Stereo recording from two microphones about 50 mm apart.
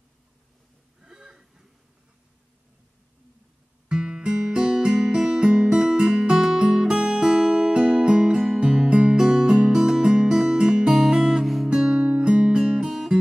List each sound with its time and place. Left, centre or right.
1.0 s a sound: centre
3.9 s music: centre
10.9 s guitar: centre
11.4 s music: centre
11.7 s music: centre